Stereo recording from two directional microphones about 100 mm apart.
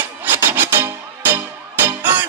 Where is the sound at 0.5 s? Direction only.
20° right (ahead or behind).